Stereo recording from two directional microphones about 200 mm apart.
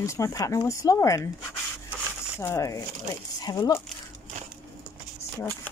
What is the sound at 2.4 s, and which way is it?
Speech, 15° left (ahead or behind).